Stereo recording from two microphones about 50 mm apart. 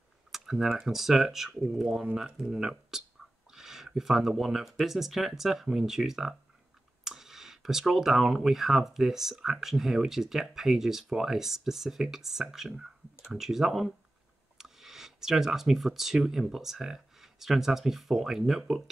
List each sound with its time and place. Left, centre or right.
0.3 s speech: centre